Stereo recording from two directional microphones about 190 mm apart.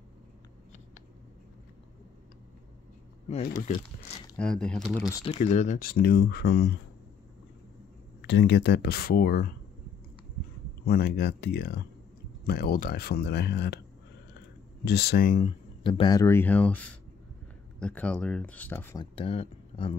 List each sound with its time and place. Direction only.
3.4 s speech: 45° left (ahead or behind)
4.4 s speech: 5° left (ahead or behind)
5.2 s speech: 35° left (ahead or behind); by 6.7 s 55° left (ahead or behind)
8.2 s speech: 65° left (ahead or behind); by 9.5 s 50° left (ahead or behind)
10.9 s speech: 55° left (ahead or behind)
14.9 s speech: 60° left (ahead or behind)
15.4 s speech: 25° left (ahead or behind)
19.1 s speech: 30° left (ahead or behind)